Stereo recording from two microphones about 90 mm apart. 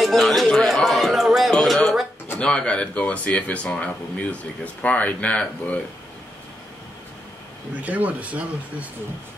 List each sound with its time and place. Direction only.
0.0 s a sound: centre (ahead or behind)
2.3 s speech: 10° left (ahead or behind)
7.8 s speech: 15° right (ahead or behind)